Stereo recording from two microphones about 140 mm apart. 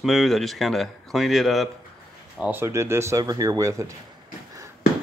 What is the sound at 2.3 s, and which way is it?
Speech, 15° right (ahead or behind).